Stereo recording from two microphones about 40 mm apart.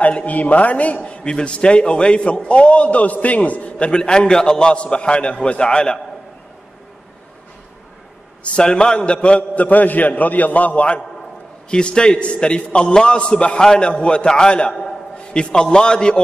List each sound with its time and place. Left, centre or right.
0.0 s a man's voice: left
3.8 s a man's voice: left
8.5 s a man's voice: left
9.6 s a man's voice: left
11.7 s a man's voice: left
14.7 s a man's voice: centre
15.1 s a man's voice: left